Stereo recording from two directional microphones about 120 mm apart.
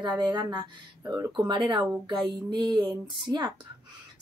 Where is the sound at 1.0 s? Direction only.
20° right (ahead or behind).